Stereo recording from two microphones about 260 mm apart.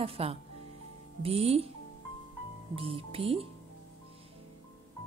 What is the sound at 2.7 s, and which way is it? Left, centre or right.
Speech, right.